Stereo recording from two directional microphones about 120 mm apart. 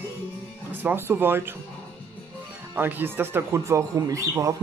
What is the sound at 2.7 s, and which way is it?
Speech, 15° right (ahead or behind).